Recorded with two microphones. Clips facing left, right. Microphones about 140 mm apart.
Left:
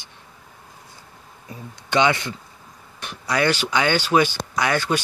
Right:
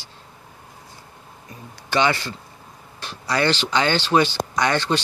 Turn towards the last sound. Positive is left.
turn(degrees=10)  # may be behind; listen again after turning